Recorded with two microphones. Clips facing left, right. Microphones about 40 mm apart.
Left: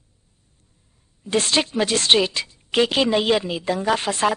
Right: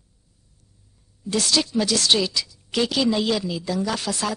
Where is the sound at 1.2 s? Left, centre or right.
Left.